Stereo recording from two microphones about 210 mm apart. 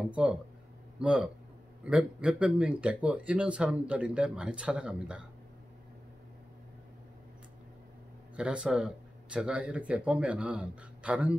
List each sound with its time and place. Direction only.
0.1 s speech: 5° right (ahead or behind)
8.4 s speech: 5° right (ahead or behind)